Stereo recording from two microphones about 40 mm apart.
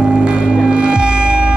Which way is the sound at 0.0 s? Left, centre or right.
Right.